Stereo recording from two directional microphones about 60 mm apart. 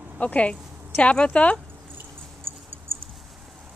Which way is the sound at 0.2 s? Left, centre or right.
Left.